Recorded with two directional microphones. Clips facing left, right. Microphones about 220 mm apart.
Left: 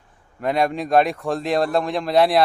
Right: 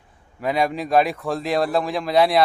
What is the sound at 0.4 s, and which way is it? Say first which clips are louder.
Speech: left 1 dB; centre (ahead or behind).